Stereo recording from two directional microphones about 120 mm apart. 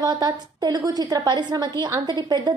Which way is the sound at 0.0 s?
35° right (ahead or behind).